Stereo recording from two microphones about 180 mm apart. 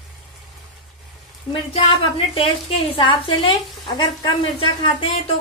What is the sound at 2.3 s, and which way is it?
A woman's voice, 30° left (ahead or behind).